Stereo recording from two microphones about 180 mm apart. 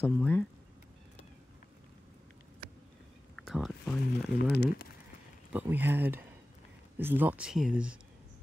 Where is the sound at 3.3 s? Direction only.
Centre (ahead or behind).